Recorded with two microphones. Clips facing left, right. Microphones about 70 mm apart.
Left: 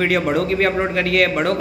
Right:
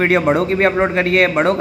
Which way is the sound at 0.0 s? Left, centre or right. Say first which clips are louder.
Right 4 dB; right.